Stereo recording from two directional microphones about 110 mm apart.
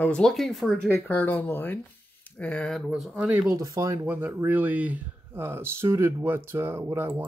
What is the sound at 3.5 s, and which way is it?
Speech, 30° right (ahead or behind).